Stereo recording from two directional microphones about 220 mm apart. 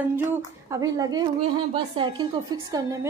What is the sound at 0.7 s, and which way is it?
A woman's voice, 15° right (ahead or behind).